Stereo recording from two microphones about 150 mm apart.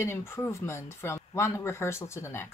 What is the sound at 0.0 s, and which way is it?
Speech, 20° left (ahead or behind).